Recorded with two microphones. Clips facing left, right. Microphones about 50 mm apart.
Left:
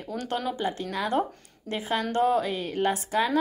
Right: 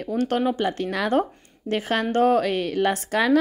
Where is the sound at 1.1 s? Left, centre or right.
Right.